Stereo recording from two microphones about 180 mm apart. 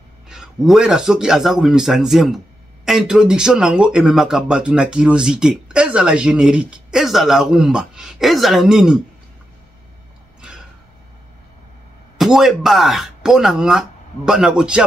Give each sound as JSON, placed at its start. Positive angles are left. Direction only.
{"t": 0.3, "sound": "a man's voice", "side_deg": -5}
{"t": 12.2, "sound": "a man's voice", "side_deg": 0}